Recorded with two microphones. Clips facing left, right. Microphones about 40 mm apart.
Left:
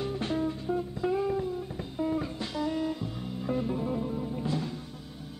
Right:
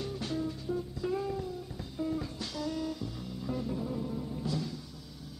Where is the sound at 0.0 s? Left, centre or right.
Left.